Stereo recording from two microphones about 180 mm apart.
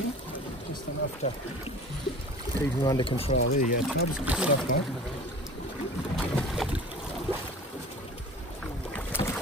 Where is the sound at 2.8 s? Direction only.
25° left (ahead or behind).